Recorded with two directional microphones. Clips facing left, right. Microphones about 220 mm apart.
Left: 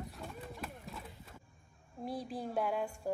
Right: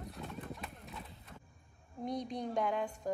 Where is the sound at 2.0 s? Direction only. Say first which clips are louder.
Right 2 dB; 5° left (ahead or behind).